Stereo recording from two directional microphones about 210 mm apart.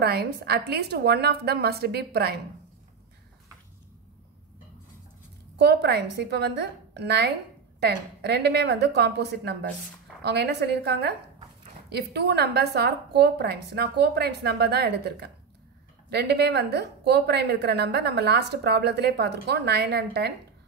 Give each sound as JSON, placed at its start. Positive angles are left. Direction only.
{"t": 0.0, "sound": "a woman's voice", "side_deg": -50}
{"t": 5.6, "sound": "a woman's voice", "side_deg": -55}